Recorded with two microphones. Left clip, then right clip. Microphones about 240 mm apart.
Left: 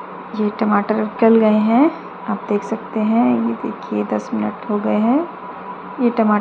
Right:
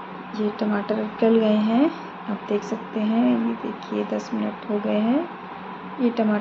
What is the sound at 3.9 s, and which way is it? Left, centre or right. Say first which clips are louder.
Speech: left 4 dB; left.